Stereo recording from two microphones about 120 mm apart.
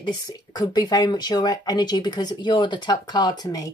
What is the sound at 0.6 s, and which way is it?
Speech, 35° left (ahead or behind).